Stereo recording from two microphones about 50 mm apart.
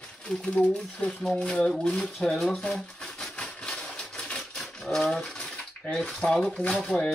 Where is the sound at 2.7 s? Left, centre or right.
Centre.